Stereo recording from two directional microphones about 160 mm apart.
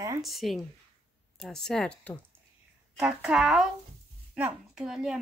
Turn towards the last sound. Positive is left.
turn(degrees=-5)  # may be behind; listen again after turning